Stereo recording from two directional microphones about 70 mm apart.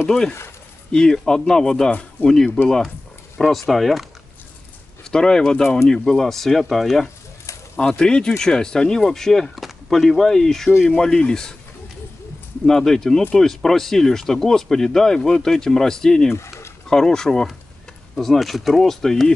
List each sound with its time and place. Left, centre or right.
0.9 s speech: centre
1.9 s speech: left
2.2 s speech: centre
5.1 s speech: centre
12.6 s speech: centre
16.3 s a sound: left
16.9 s speech: centre